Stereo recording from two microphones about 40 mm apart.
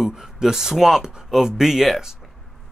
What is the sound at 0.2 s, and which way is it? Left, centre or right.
Speech, centre.